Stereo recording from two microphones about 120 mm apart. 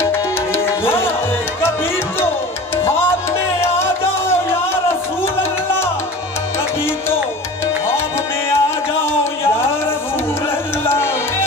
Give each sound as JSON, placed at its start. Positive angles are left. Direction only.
{"t": 0.0, "sound": "music", "side_deg": 20}
{"t": 3.6, "sound": "music", "side_deg": 20}
{"t": 8.6, "sound": "music", "side_deg": 20}